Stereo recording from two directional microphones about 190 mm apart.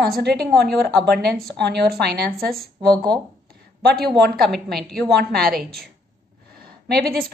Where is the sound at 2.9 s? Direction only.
20° right (ahead or behind).